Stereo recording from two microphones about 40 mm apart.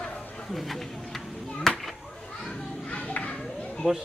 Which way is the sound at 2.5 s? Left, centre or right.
Left.